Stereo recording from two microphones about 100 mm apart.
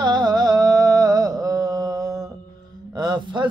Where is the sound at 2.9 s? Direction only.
45° right (ahead or behind).